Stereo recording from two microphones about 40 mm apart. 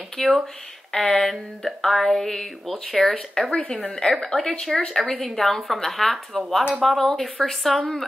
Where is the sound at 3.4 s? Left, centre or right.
Left.